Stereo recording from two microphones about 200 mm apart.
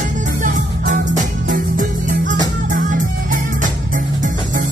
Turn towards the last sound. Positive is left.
turn(degrees=-40)  # may be behind; listen again after turning